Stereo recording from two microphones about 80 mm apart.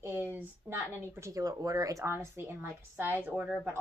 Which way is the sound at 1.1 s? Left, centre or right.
Right.